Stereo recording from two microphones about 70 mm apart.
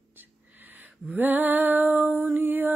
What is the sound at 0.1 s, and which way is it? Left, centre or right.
Female singing, right.